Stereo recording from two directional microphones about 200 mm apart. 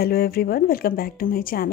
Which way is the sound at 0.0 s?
50° left (ahead or behind).